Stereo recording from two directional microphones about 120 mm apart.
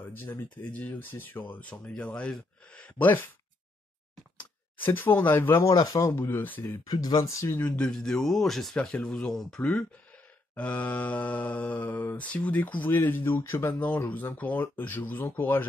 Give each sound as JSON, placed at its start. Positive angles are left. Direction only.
{"t": 0.0, "sound": "mantra", "side_deg": 15}
{"t": 4.4, "sound": "speech", "side_deg": 15}
{"t": 6.9, "sound": "speech", "side_deg": 30}
{"t": 7.6, "sound": "speech", "side_deg": 10}
{"t": 10.5, "sound": "mantra", "side_deg": 10}